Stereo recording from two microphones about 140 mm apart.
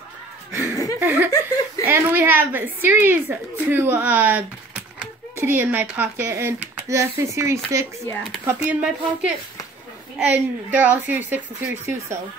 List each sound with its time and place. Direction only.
0.5 s chuckle: 25° left (ahead or behind)
0.9 s a woman's voice: 15° right (ahead or behind)